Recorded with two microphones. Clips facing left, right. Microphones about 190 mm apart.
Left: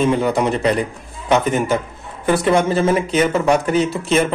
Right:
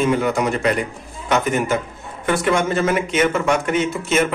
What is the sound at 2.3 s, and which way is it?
Speech, 35° left (ahead or behind).